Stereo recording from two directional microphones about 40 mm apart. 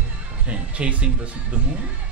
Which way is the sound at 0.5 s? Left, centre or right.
Right.